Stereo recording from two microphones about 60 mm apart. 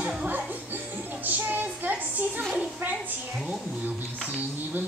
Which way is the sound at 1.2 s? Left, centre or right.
Right.